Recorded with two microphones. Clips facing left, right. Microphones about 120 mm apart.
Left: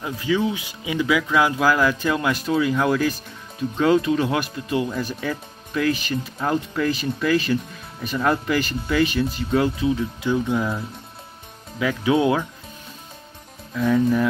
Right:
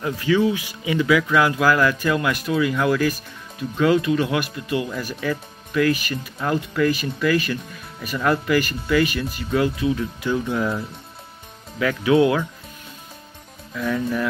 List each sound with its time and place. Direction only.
0.0 s speech: 15° left (ahead or behind)
9.9 s speech: 15° left (ahead or behind)
11.8 s speech: 15° left (ahead or behind)
12.1 s speech: 25° left (ahead or behind)
13.7 s speech: 20° left (ahead or behind)